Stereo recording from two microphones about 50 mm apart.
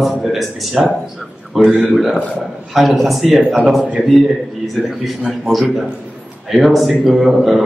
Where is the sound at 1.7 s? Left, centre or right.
Right.